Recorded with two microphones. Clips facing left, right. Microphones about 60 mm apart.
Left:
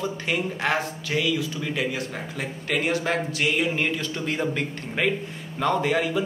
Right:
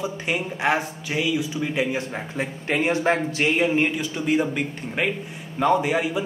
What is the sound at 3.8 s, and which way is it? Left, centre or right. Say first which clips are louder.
Speech: right 3 dB; centre.